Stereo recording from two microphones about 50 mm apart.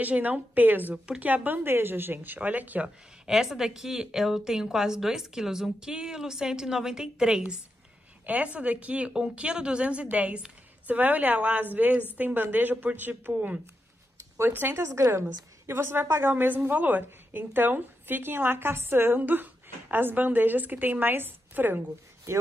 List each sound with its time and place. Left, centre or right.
0.0 s a woman's voice: right
0.9 s speech: centre
1.2 s a woman's voice: right
3.3 s a woman's voice: centre
8.3 s a woman's voice: right
14.8 s a woman's voice: right
19.1 s a woman's voice: right